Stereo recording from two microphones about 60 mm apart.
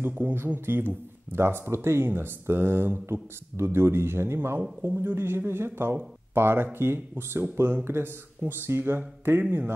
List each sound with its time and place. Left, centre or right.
0.0 s speech: right
9.4 s a man's voice: right